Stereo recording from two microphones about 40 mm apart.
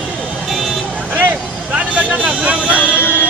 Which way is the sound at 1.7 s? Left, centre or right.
Right.